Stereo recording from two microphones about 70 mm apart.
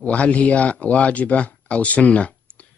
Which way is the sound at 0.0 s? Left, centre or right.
Centre.